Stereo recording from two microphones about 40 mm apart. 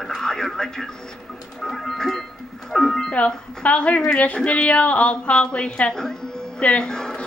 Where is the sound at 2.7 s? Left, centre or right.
Centre.